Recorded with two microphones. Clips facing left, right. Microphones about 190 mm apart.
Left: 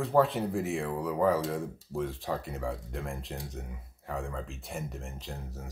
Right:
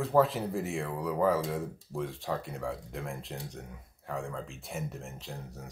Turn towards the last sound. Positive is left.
turn(degrees=0)  # may be behind; listen again after turning